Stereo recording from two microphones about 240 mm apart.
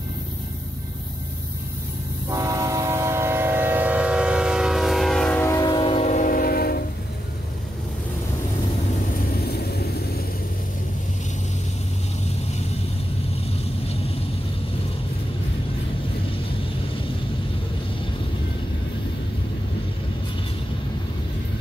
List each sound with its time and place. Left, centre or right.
2.2 s train: centre; by 6.8 s left
9.2 s vehicle: left